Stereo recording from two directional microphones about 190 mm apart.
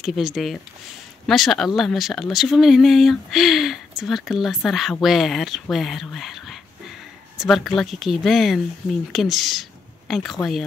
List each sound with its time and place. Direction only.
0.0 s speech: centre (ahead or behind)